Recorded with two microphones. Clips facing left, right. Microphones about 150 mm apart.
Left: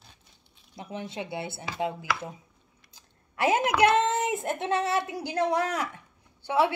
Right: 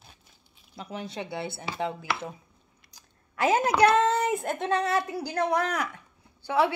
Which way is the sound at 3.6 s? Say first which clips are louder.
Right 2 dB; 35° right (ahead or behind).